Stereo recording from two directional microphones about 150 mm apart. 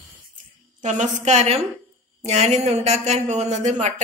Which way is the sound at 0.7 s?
55° right (ahead or behind).